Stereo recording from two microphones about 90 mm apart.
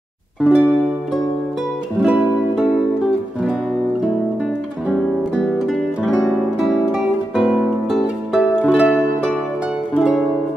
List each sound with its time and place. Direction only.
0.4 s music: 15° right (ahead or behind)
2.0 s music: 15° right (ahead or behind)
5.7 s guitar: centre (ahead or behind)
8.6 s music: 5° right (ahead or behind)